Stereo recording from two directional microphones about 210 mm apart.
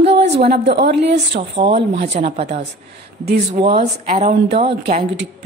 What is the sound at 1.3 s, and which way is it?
A woman's voice, 30° right (ahead or behind).